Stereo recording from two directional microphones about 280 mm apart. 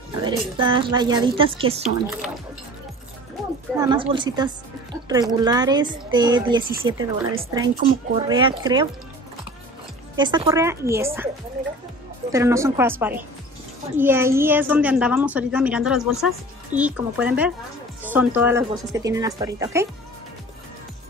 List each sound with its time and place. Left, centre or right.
0.2 s speech: centre
3.4 s music: centre
3.7 s speech: centre
10.1 s speech: centre
12.3 s a woman's voice: centre